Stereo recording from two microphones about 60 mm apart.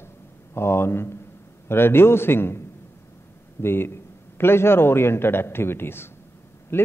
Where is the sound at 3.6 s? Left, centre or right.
Left.